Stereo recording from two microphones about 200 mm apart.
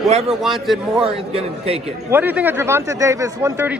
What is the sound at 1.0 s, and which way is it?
Speech, 30° right (ahead or behind).